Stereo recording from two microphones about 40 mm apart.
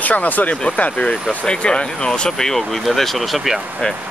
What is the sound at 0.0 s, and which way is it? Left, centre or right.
Speech, left.